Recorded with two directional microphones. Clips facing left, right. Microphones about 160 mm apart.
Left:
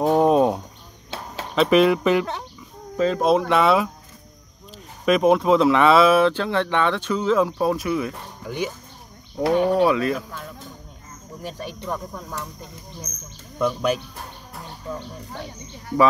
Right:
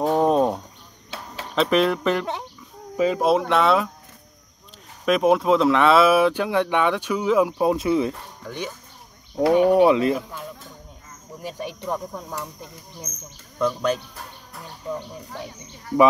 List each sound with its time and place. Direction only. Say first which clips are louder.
0.0 s a sound: left 2 dB; 5° left (ahead or behind)
1.5 s speech: left 3 dB; 5° left (ahead or behind)
3.0 s speech: left 1 dB; 10° right (ahead or behind)
5.0 s speech: left 1 dB; centre (ahead or behind); by 8.1 s 25° right (ahead or behind)
9.4 s speech: right 3 dB; 15° right (ahead or behind)
11.4 s speech: right 1 dB; 15° right (ahead or behind)
13.1 s speech: even; 90° right
13.6 s speech: left 1 dB; 10° left (ahead or behind)